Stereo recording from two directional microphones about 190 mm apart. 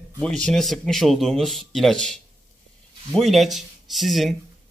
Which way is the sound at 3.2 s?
Centre (ahead or behind).